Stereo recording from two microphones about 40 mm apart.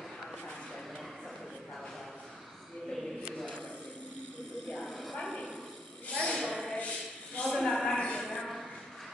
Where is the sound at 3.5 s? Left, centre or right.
Left.